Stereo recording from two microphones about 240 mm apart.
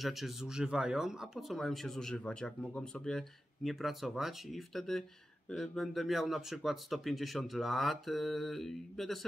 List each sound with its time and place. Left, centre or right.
0.0 s speech: centre